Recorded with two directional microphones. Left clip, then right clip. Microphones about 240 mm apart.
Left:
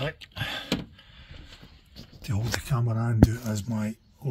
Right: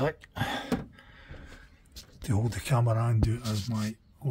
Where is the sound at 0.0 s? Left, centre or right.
Centre.